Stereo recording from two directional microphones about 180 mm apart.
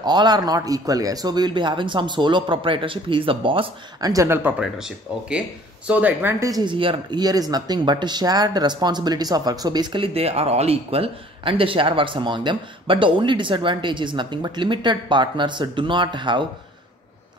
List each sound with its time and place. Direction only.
0.0 s speech: 25° right (ahead or behind)